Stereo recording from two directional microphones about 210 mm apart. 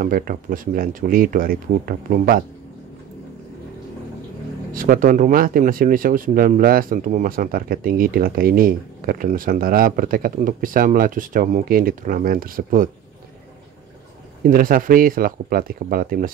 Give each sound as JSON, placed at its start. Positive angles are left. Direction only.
{"t": 0.0, "sound": "speech", "side_deg": -40}
{"t": 4.7, "sound": "speech", "side_deg": -40}
{"t": 14.5, "sound": "speech", "side_deg": -40}